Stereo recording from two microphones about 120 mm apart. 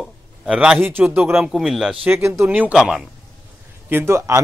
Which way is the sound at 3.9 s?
20° right (ahead or behind).